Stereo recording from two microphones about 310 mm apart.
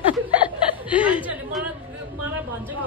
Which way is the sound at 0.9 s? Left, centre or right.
Centre.